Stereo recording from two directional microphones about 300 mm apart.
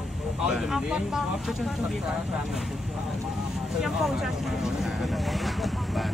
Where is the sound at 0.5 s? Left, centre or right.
Centre.